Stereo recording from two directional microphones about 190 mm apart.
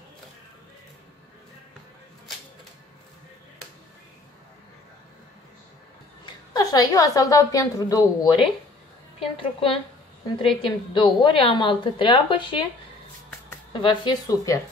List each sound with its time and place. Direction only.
6.2 s a woman's voice: 20° left (ahead or behind)
13.7 s a woman's voice: 25° left (ahead or behind)